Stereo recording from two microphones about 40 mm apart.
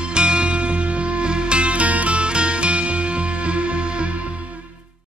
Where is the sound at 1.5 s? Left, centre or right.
Right.